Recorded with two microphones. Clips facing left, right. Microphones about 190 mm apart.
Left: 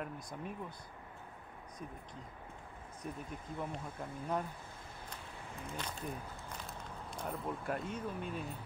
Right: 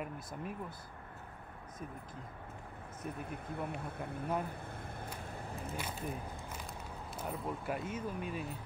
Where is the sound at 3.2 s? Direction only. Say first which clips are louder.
Right 2 dB; 60° right (ahead or behind).